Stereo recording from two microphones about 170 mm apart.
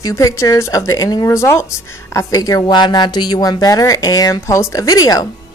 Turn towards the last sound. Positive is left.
turn(degrees=20)  # may be behind; listen again after turning